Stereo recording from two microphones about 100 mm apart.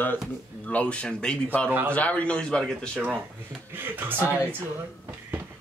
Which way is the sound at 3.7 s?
20° right (ahead or behind).